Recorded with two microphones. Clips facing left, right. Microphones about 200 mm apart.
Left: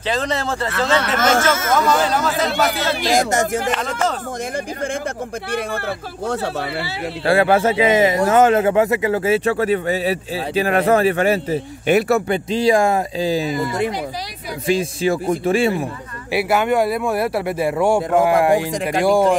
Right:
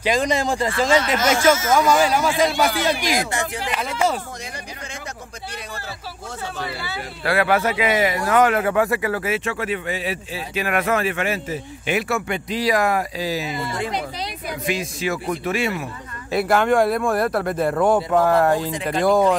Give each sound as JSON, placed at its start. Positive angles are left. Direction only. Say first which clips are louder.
{"t": 0.0, "sound": "speech", "louder": "right 2 dB", "side_deg": -10}
{"t": 3.2, "sound": "speech", "louder": "left 7 dB", "side_deg": 45}
{"t": 3.7, "sound": "speech", "louder": "left 1 dB", "side_deg": -10}
{"t": 7.2, "sound": "a man's voice", "louder": "left 4 dB", "side_deg": 30}
{"t": 16.3, "sound": "speech", "louder": "even", "side_deg": 5}